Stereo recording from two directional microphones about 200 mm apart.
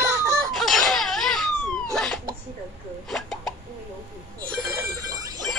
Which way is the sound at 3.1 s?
Centre (ahead or behind).